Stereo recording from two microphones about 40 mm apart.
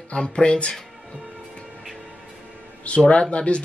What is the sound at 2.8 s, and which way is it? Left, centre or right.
Speech, left.